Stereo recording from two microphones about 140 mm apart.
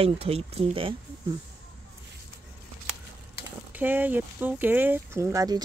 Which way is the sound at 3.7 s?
15° right (ahead or behind).